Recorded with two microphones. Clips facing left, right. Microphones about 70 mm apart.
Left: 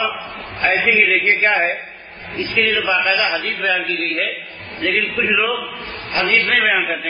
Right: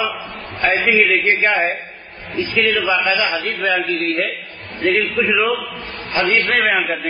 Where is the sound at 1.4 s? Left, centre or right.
Centre.